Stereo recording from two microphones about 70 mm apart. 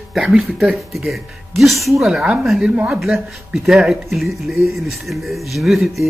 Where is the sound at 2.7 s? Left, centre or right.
Centre.